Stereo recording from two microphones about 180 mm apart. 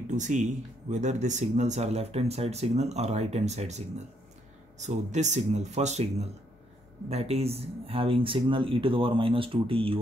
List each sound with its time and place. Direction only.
0.1 s speech: 40° right (ahead or behind)